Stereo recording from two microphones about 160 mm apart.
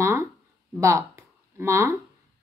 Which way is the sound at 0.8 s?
15° right (ahead or behind).